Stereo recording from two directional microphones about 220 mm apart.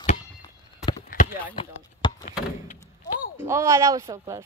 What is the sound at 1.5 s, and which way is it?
Speech, 20° left (ahead or behind).